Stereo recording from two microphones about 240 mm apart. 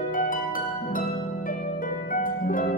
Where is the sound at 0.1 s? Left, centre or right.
Left.